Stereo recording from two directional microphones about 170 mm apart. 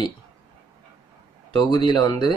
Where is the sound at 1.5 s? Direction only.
25° left (ahead or behind).